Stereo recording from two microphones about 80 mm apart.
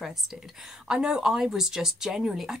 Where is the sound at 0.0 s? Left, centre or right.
Centre.